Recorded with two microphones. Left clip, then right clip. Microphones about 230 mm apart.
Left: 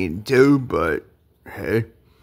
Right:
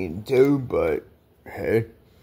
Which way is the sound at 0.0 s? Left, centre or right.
Left.